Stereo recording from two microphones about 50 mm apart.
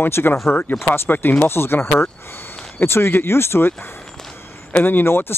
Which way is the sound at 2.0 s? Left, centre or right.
Left.